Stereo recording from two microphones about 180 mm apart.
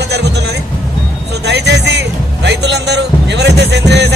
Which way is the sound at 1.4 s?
70° right (ahead or behind).